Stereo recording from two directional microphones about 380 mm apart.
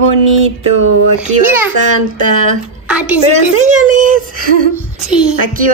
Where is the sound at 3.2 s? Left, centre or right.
Centre.